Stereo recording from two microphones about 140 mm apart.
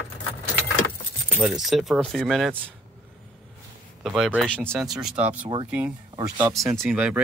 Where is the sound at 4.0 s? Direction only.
5° right (ahead or behind).